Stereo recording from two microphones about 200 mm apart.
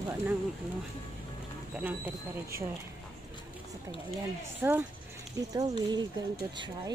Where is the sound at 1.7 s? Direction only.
10° right (ahead or behind).